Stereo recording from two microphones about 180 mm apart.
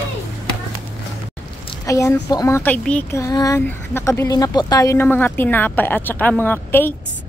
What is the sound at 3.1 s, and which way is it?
Speech, 20° left (ahead or behind).